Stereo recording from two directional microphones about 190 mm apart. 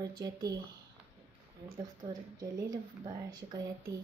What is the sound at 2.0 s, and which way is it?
Speech, 20° right (ahead or behind).